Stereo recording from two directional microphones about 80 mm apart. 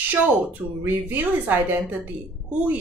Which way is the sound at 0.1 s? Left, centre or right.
Centre.